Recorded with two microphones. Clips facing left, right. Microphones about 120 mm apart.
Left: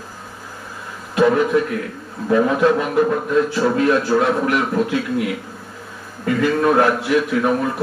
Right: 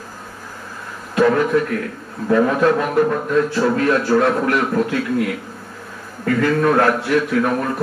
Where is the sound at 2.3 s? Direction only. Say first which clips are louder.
Even; 15° left (ahead or behind).